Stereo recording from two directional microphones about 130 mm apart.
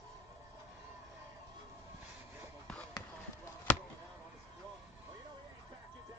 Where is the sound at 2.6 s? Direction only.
10° left (ahead or behind).